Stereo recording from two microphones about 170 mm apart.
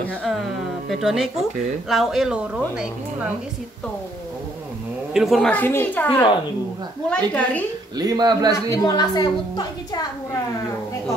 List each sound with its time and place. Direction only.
0.2 s a sound: centre (ahead or behind)
1.9 s speech: centre (ahead or behind)
5.1 s a woman's voice: centre (ahead or behind)
8.0 s a man's voice: 25° right (ahead or behind)
8.6 s a woman's voice: 20° left (ahead or behind)